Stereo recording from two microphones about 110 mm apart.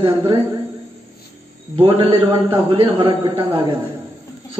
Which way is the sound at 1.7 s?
50° right (ahead or behind).